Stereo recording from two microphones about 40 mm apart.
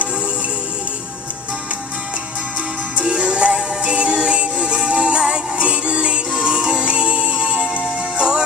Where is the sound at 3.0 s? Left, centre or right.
Right.